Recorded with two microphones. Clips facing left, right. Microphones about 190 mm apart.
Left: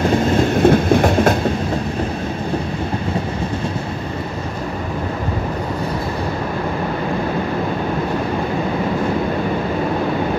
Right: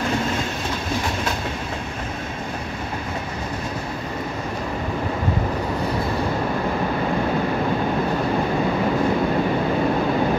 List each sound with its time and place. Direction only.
0.6 s train: 60° left (ahead or behind)